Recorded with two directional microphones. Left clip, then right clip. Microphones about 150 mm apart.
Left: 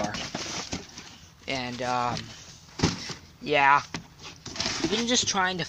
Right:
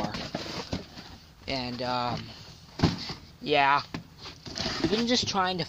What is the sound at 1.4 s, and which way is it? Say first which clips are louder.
Speech: left 1 dB; 5° right (ahead or behind).